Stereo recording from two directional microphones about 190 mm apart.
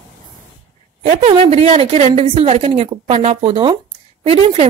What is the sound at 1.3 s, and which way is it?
A woman's voice, 30° right (ahead or behind).